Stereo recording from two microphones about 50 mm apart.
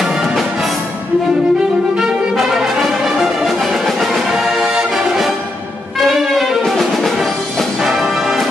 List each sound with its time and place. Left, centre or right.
0.0 s music: centre
2.0 s music: centre